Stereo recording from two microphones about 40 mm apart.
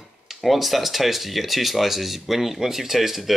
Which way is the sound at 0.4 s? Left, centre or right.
Centre.